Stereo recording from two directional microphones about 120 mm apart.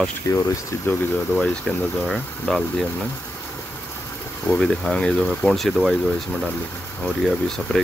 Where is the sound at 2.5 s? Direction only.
5° left (ahead or behind).